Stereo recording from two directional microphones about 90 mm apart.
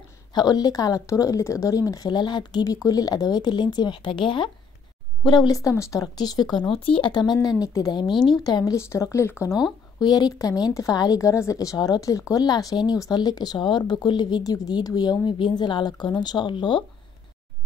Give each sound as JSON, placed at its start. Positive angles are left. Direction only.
{"t": 0.3, "sound": "a woman's voice", "side_deg": 50}
{"t": 5.5, "sound": "speech", "side_deg": 35}
{"t": 6.7, "sound": "speech", "side_deg": 80}
{"t": 7.4, "sound": "speech", "side_deg": 45}
{"t": 8.1, "sound": "a woman's voice", "side_deg": 0}
{"t": 8.5, "sound": "speech", "side_deg": 45}
{"t": 8.7, "sound": "speech", "side_deg": 30}
{"t": 9.5, "sound": "speech", "side_deg": -5}
{"t": 10.0, "sound": "speech", "side_deg": 50}